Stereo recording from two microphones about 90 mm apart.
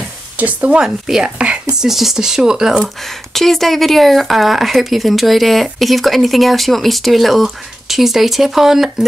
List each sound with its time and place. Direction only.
0.4 s speech: 15° right (ahead or behind)
3.0 s a woman's voice: 5° left (ahead or behind)